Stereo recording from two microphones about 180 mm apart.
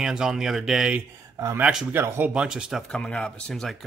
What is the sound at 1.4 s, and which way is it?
Speech, 20° right (ahead or behind).